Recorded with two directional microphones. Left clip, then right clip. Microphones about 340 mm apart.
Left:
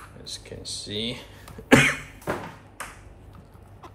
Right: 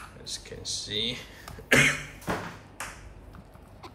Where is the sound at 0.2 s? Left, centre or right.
Centre.